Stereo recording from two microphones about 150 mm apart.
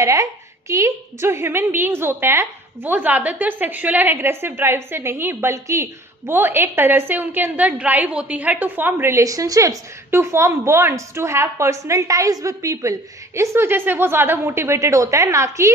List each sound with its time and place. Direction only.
0.0 s a woman's voice: 20° right (ahead or behind)